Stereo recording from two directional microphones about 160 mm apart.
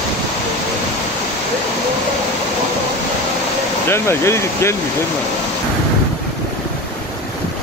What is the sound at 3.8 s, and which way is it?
Speech, 15° left (ahead or behind).